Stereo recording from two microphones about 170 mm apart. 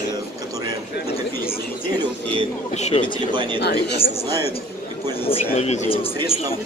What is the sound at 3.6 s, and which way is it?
Speech, 75° left (ahead or behind).